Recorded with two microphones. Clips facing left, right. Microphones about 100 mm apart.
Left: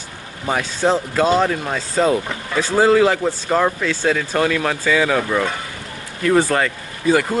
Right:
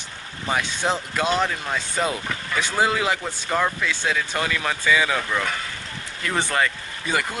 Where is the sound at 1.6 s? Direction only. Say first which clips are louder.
Left 6 dB; 25° left (ahead or behind).